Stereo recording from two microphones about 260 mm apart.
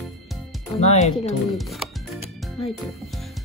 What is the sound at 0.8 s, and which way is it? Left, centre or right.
Speech, left.